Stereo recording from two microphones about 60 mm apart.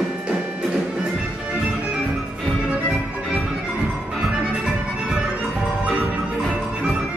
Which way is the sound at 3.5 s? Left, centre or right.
Centre.